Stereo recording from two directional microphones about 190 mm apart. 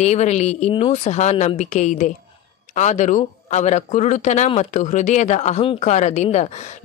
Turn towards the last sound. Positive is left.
turn(degrees=35)  # may be behind; listen again after turning